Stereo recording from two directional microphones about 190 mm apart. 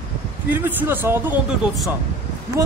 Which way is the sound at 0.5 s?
10° right (ahead or behind).